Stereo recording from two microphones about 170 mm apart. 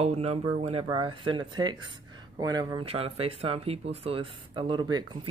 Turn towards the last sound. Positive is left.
turn(degrees=-25)  # may be behind; listen again after turning